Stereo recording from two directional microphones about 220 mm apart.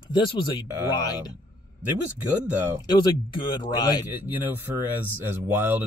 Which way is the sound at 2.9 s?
20° left (ahead or behind).